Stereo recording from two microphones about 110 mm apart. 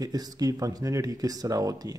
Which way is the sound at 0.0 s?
35° right (ahead or behind).